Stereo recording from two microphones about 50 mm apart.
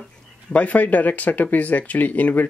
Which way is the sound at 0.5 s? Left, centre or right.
Left.